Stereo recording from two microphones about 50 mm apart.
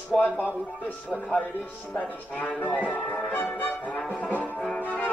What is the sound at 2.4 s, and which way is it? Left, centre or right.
Speech, left.